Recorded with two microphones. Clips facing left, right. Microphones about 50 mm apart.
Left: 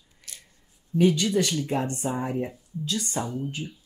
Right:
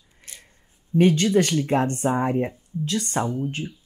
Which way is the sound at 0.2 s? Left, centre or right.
Right.